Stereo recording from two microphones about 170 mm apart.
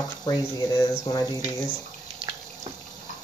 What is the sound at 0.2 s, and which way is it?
Speech, 25° left (ahead or behind).